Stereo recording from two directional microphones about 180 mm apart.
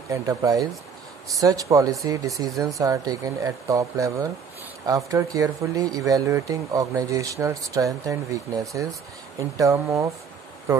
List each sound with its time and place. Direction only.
0.1 s speech: 20° right (ahead or behind)